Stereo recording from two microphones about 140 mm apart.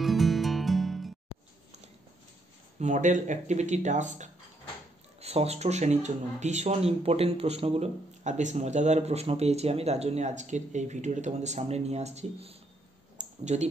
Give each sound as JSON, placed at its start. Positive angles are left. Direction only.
{"t": 0.0, "sound": "music", "side_deg": 0}
{"t": 2.8, "sound": "speech", "side_deg": -60}
{"t": 5.2, "sound": "speech", "side_deg": -45}
{"t": 13.2, "sound": "a sound", "side_deg": -55}